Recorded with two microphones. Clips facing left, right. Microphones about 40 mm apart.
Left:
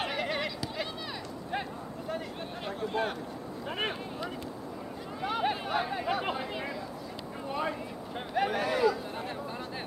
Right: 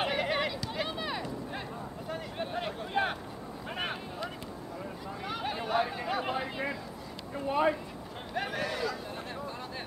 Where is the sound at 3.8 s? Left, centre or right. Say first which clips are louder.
Left 1 dB; centre.